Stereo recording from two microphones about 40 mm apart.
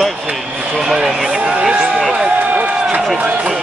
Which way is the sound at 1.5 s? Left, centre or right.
Centre.